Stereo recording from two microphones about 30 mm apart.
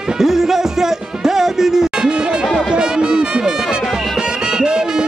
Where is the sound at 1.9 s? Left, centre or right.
Right.